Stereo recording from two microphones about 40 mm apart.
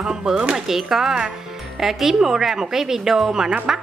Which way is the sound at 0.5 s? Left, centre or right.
Centre.